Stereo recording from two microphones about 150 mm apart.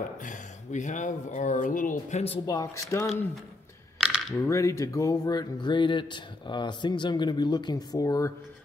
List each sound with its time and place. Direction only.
0.2 s speech: 55° left (ahead or behind)
2.4 s speech: 25° left (ahead or behind)
4.4 s speech: 20° left (ahead or behind)